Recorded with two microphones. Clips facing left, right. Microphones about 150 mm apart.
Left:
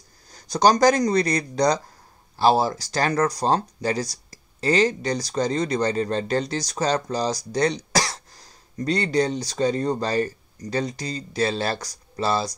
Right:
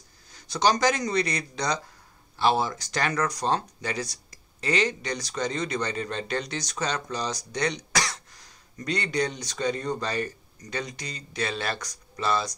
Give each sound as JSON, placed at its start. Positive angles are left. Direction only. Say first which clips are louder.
{"t": 0.3, "sound": "speech", "louder": "left 5 dB", "side_deg": 40}